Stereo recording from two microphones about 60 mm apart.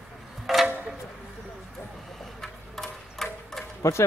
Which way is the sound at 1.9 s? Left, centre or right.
Centre.